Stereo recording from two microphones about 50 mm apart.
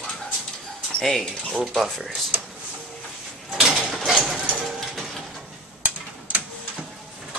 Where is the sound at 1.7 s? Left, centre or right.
Centre.